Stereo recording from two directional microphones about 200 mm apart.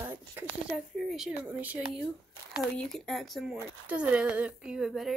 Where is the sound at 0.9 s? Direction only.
Centre (ahead or behind).